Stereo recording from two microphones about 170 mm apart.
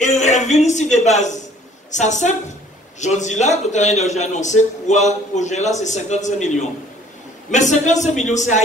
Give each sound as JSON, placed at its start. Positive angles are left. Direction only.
{"t": 0.0, "sound": "a man's voice", "side_deg": 45}